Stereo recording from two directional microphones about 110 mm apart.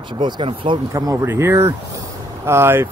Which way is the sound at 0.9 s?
30° right (ahead or behind).